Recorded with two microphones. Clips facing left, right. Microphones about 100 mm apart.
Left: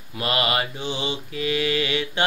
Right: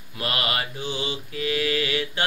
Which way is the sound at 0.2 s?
20° left (ahead or behind).